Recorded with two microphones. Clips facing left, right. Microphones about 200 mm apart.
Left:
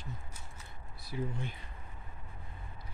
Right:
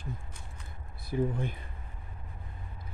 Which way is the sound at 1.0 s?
55° right (ahead or behind).